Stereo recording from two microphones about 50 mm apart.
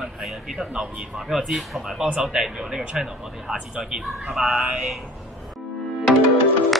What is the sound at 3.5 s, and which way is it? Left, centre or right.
Speech, right.